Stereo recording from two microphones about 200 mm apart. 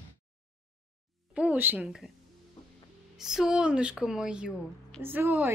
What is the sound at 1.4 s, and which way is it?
Speech, 10° right (ahead or behind).